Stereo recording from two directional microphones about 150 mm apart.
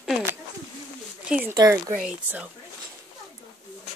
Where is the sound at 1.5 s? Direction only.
20° right (ahead or behind).